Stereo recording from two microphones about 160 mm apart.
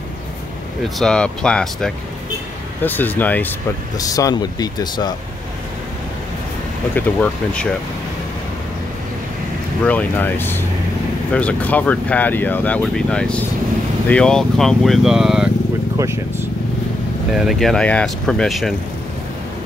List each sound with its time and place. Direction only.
0.8 s speech: centre (ahead or behind)
4.0 s speech: 20° left (ahead or behind)
7.0 s speech: 10° left (ahead or behind)
9.8 s speech: 10° left (ahead or behind)
16.0 s speech: 15° right (ahead or behind)
17.3 s speech: centre (ahead or behind)